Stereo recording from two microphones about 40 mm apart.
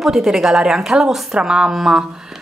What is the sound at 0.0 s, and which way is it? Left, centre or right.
A woman's voice, centre.